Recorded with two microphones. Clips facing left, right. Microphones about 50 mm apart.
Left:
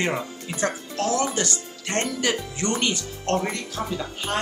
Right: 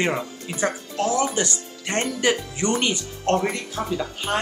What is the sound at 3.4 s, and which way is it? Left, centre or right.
Speech, centre.